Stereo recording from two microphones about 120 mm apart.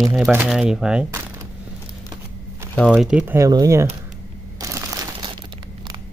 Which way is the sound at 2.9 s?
5° right (ahead or behind).